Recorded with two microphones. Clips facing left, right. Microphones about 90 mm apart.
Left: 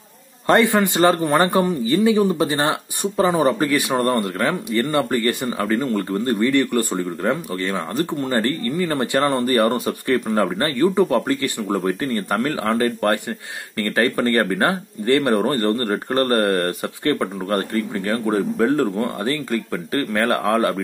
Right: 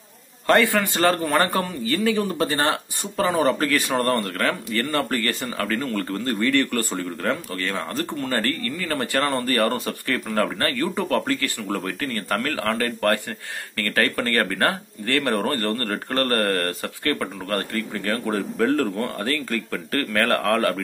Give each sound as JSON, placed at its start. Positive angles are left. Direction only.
{"t": 0.5, "sound": "a man's voice", "side_deg": 20}